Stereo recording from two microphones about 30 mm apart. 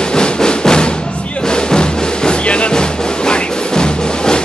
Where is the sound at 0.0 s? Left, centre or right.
Left.